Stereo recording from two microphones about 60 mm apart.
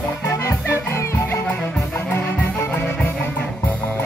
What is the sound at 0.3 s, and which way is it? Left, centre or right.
Music, left.